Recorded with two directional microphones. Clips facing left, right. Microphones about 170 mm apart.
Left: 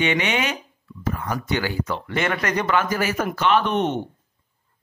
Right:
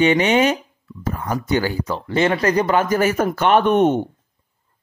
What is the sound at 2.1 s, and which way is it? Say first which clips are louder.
Speech: right 8 dB; 30° right (ahead or behind).